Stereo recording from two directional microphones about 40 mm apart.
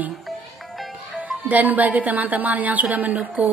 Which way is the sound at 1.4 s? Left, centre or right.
Right.